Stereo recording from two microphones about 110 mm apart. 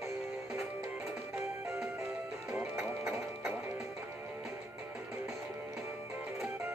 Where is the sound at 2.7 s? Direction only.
25° right (ahead or behind).